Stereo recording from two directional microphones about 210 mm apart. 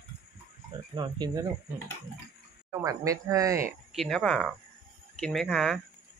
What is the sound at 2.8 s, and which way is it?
Speech, 15° right (ahead or behind).